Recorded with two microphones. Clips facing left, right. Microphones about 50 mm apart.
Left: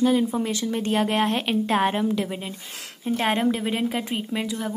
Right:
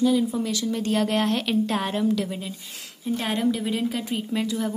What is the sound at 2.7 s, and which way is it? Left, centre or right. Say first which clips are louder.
A woman's voice: left 2 dB; left.